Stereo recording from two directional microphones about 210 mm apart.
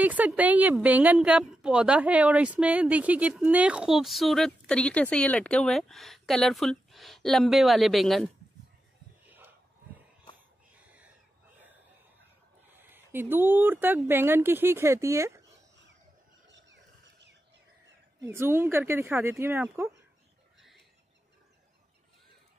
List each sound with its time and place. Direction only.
0.0 s a woman's voice: 5° right (ahead or behind)
9.2 s a sound: 10° right (ahead or behind)
12.7 s speech: 10° right (ahead or behind)
16.4 s wild animals: 60° right (ahead or behind)
18.2 s speech: 10° right (ahead or behind)